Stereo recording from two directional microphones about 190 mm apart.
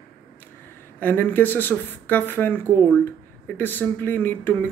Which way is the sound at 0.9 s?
10° left (ahead or behind).